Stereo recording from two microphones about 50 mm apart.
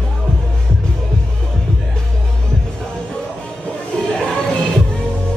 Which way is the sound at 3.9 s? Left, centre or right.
Centre.